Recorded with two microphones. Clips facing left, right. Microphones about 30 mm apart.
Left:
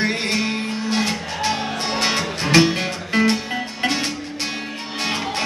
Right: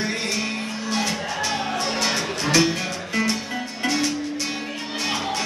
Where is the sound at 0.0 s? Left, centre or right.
Left.